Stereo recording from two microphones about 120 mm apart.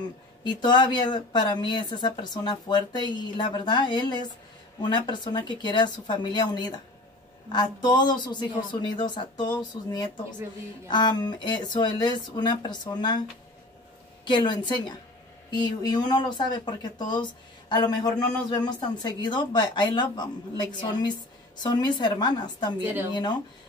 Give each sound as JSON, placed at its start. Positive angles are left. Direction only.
{"t": 0.4, "sound": "speech", "side_deg": 40}
{"t": 14.2, "sound": "speech", "side_deg": 40}